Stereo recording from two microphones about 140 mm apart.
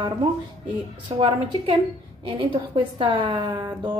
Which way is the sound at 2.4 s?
35° right (ahead or behind).